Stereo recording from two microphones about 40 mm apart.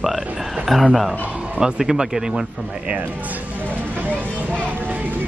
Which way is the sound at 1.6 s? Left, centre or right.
Centre.